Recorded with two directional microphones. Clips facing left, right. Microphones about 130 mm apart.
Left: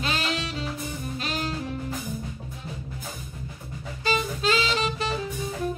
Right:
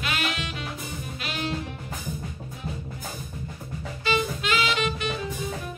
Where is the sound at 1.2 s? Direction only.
40° left (ahead or behind).